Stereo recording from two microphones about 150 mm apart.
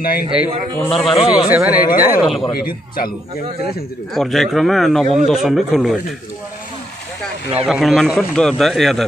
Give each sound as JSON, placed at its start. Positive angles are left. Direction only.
{"t": 0.0, "sound": "a man's voice", "side_deg": 80}
{"t": 0.7, "sound": "a man's voice", "side_deg": 0}
{"t": 1.1, "sound": "speech", "side_deg": 40}
{"t": 1.5, "sound": "speech", "side_deg": -10}
{"t": 2.5, "sound": "a man's voice", "side_deg": 75}
{"t": 4.1, "sound": "a man's voice", "side_deg": 0}
{"t": 7.6, "sound": "a man's voice", "side_deg": 0}